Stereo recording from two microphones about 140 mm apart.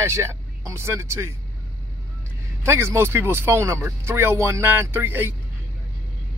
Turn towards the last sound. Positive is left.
turn(degrees=-15)  # may be behind; listen again after turning